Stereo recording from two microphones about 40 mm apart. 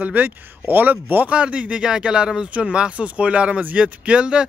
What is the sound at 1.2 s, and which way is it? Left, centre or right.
Speech, right.